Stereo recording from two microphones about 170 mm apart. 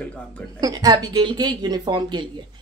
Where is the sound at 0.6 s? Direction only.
20° right (ahead or behind).